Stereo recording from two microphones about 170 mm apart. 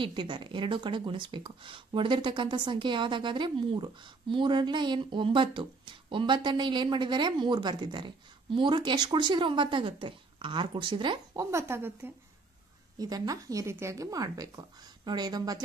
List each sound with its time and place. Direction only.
0.0 s speech: 30° right (ahead or behind)
11.5 s speech: 15° right (ahead or behind)